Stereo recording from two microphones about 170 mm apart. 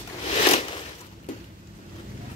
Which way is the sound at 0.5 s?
40° left (ahead or behind).